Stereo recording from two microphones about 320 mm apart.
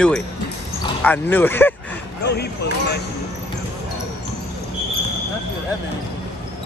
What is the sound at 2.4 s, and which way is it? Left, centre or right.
Speech, left.